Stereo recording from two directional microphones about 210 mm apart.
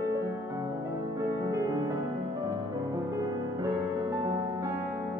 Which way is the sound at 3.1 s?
20° right (ahead or behind).